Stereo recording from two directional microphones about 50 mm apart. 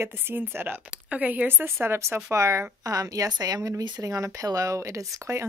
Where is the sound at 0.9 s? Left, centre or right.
Right.